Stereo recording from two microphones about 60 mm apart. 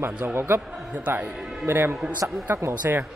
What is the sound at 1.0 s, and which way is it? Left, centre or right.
Speech, right.